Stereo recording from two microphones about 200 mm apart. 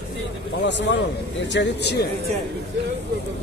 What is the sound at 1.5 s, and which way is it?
Speech, 55° left (ahead or behind).